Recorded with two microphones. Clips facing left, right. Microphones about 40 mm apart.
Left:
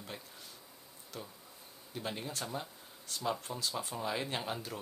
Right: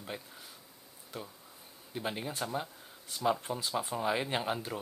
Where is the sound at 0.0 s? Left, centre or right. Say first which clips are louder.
Right 4 dB; centre.